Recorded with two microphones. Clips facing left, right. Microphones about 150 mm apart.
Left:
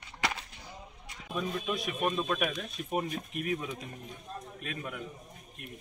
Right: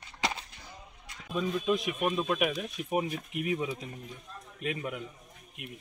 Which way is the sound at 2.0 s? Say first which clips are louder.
Right 2 dB; 10° right (ahead or behind).